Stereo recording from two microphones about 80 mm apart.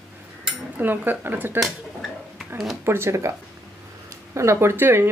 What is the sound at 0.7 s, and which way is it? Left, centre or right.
Speech, right.